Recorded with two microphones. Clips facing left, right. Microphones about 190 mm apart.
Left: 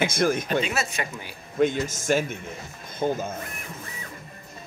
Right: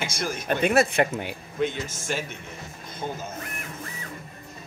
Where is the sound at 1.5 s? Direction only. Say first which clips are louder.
Left 5 dB; 45° left (ahead or behind).